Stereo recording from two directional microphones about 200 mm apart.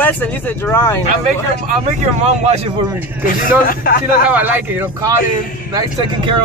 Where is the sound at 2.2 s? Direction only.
30° right (ahead or behind).